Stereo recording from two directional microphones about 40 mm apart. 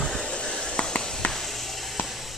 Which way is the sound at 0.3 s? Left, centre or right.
Centre.